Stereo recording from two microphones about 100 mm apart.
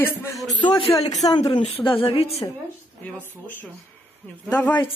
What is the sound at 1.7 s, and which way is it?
Speech, 70° left (ahead or behind).